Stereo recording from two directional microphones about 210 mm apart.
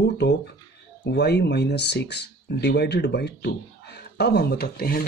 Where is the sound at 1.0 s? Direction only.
50° left (ahead or behind).